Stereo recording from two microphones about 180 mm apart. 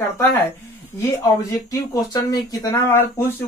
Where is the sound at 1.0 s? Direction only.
20° left (ahead or behind).